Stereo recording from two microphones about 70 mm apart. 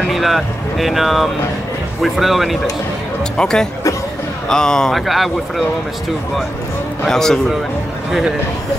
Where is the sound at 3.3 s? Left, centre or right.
Centre.